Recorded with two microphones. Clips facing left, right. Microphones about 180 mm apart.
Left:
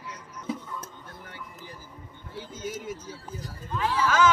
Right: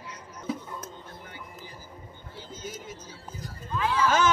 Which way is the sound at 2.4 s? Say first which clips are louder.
Left 5 dB; 65° left (ahead or behind).